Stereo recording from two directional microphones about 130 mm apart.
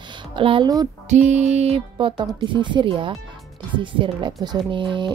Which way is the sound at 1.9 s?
35° right (ahead or behind).